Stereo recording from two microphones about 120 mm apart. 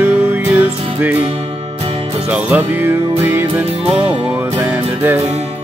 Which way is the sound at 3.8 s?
50° right (ahead or behind).